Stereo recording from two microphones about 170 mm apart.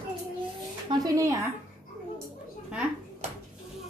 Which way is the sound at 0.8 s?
20° right (ahead or behind).